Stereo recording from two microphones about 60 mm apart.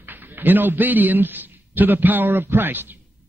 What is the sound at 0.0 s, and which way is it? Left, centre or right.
A man's voice, right.